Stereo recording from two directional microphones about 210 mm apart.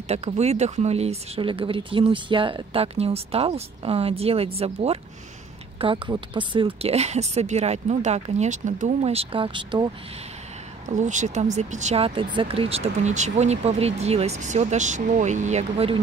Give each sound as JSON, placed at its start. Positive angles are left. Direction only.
{"t": 0.1, "sound": "speech", "side_deg": -30}
{"t": 10.9, "sound": "speech", "side_deg": -35}